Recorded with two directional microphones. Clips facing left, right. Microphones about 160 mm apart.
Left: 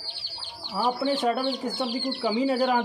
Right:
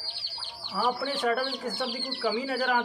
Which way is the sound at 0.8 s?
25° left (ahead or behind).